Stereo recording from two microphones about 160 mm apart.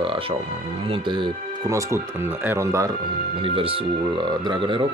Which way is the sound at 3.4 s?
35° right (ahead or behind).